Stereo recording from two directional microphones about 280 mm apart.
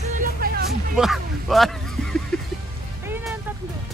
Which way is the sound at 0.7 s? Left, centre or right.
Centre.